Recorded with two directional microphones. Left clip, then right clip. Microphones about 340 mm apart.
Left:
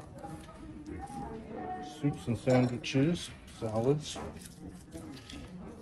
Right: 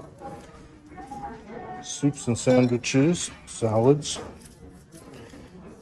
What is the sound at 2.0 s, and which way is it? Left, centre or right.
Speech, centre.